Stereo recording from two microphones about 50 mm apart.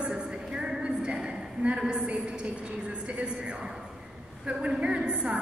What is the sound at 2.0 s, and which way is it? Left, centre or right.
A woman's voice, right.